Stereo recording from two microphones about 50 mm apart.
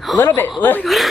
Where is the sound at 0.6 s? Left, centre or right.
Left.